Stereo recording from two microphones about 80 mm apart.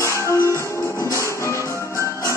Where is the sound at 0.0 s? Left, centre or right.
Left.